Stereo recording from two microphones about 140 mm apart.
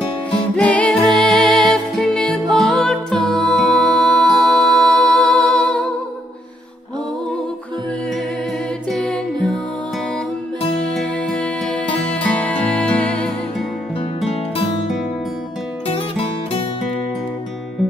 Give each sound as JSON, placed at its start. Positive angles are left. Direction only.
{"t": 0.6, "sound": "music", "side_deg": 5}
{"t": 8.9, "sound": "music", "side_deg": 5}
{"t": 11.0, "sound": "music", "side_deg": 5}